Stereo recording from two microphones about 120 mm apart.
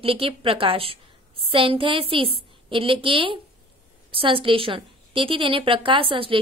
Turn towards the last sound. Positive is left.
turn(degrees=-50)  # may be behind; listen again after turning